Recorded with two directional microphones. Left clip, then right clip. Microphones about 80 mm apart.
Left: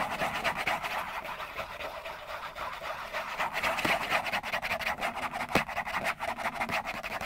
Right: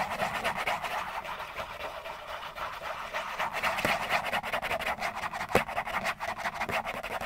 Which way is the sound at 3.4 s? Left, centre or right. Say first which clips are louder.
Even; right.